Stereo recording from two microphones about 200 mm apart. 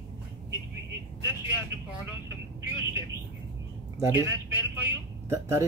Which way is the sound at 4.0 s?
10° right (ahead or behind).